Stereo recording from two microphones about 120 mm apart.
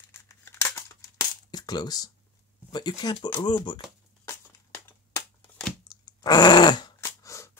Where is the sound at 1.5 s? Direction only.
35° left (ahead or behind).